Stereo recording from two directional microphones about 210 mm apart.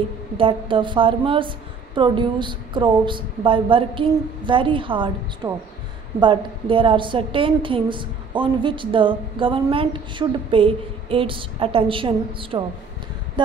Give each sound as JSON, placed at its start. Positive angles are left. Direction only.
{"t": 0.4, "sound": "a woman's voice", "side_deg": -25}